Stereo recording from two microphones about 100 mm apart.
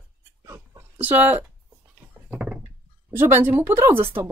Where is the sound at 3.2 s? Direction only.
20° right (ahead or behind).